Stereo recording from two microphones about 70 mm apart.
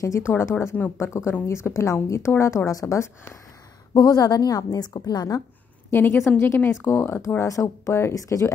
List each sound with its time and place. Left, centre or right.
0.0 s a woman's voice: left
3.9 s a woman's voice: left
5.9 s a woman's voice: left
8.1 s a woman's voice: left